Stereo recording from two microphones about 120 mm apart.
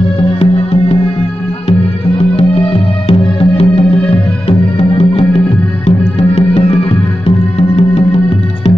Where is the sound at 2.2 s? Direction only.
55° left (ahead or behind).